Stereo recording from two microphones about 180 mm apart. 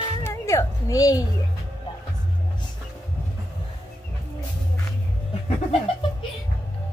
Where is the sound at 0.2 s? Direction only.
15° left (ahead or behind).